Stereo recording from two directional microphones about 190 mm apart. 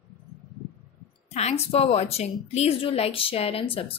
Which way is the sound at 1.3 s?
35° left (ahead or behind).